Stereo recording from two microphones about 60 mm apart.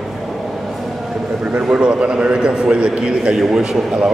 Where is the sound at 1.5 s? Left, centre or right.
Centre.